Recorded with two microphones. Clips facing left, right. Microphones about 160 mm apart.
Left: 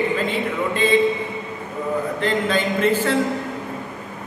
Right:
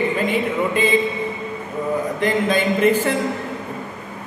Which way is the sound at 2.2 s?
15° right (ahead or behind).